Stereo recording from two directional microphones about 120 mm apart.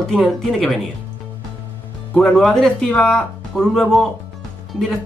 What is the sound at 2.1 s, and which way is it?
Speech, 5° left (ahead or behind).